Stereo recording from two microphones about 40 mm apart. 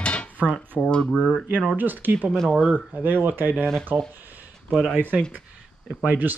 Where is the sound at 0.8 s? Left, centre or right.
Left.